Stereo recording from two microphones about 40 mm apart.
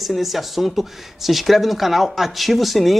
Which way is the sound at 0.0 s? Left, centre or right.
Centre.